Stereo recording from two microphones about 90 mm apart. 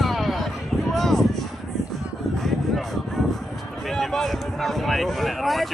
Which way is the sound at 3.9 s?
5° left (ahead or behind).